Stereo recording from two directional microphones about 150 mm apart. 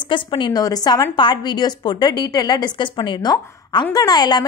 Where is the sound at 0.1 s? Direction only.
30° left (ahead or behind).